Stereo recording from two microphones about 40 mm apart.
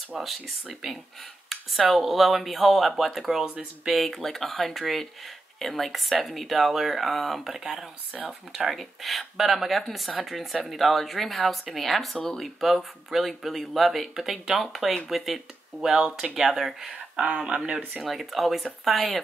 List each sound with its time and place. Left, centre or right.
0.2 s speech: centre
17.6 s speech: right
18.0 s speech: centre